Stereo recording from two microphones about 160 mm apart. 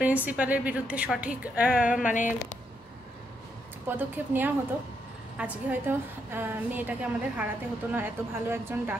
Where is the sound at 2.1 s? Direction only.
55° left (ahead or behind).